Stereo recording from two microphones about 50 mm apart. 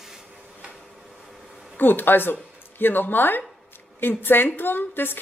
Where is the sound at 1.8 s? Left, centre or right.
Left.